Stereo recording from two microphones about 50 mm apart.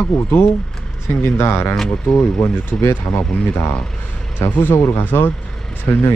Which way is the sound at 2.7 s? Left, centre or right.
Left.